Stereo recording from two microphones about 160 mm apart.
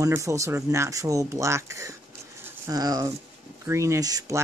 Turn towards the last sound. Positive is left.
turn(degrees=-20)  # may be behind; listen again after turning